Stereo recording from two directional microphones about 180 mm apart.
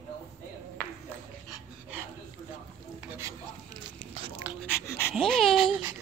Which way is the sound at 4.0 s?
30° right (ahead or behind).